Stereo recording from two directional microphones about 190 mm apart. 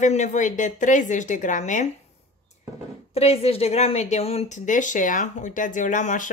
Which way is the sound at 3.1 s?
30° left (ahead or behind).